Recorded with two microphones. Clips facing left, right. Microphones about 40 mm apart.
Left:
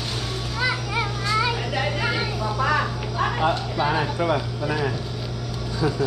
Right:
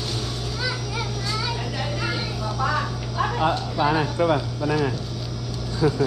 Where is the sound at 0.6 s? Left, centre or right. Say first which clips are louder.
Left 6 dB; left.